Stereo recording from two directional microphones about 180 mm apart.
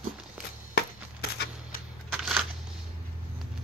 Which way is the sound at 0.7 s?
60° left (ahead or behind).